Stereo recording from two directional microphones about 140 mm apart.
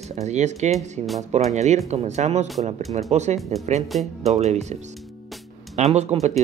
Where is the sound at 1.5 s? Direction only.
55° right (ahead or behind).